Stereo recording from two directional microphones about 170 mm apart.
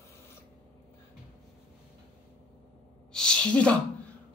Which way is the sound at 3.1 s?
5° left (ahead or behind).